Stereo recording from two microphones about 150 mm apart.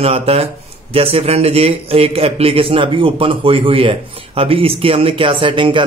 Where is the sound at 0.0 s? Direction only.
40° right (ahead or behind).